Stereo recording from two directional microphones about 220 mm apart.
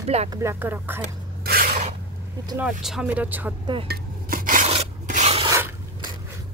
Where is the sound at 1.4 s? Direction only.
40° right (ahead or behind).